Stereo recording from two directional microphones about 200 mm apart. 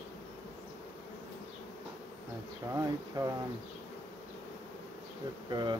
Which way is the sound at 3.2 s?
20° right (ahead or behind).